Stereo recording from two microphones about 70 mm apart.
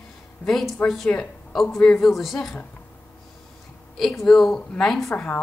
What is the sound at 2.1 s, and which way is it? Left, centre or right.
Speech, centre.